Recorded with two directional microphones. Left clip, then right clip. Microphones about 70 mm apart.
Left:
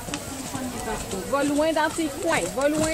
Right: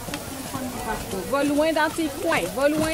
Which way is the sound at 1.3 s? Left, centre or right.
Right.